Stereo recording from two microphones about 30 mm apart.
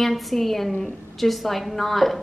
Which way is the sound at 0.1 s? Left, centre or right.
Centre.